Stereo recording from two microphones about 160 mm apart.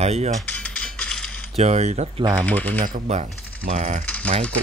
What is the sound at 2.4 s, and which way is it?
Speech, 10° left (ahead or behind).